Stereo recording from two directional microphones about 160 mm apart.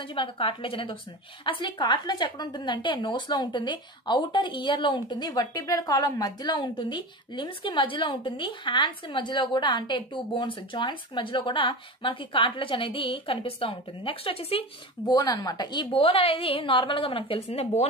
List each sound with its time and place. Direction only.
0.1 s a woman's voice: 30° left (ahead or behind)
15.0 s a woman's voice: 25° left (ahead or behind)